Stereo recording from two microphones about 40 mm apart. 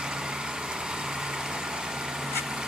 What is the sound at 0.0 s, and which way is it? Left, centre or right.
Vehicle, centre.